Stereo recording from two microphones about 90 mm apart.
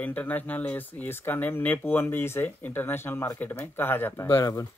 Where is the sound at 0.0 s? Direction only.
20° left (ahead or behind).